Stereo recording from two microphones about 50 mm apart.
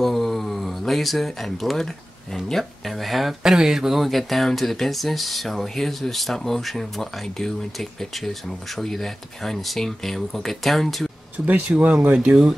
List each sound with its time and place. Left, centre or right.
0.0 s speech: centre
11.3 s speech: right